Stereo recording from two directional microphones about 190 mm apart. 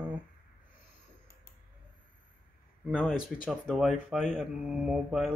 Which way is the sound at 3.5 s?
Centre (ahead or behind).